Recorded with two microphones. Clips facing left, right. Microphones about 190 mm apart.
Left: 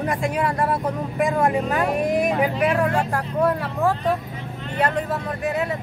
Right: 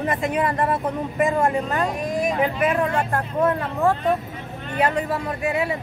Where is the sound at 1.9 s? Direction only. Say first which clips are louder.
Left 3 dB; 60° left (ahead or behind).